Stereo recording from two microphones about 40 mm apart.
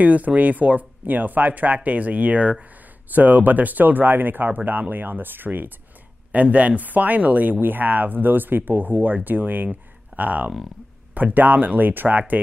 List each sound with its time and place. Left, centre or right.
0.0 s speech: right
3.1 s speech: right
6.3 s speech: right
7.6 s speech: right